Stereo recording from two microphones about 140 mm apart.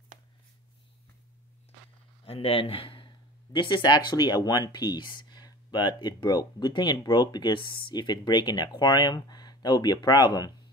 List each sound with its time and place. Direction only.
2.2 s speech: 45° left (ahead or behind)